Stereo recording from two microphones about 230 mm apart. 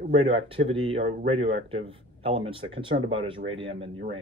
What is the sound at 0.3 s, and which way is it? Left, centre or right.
Speech, right.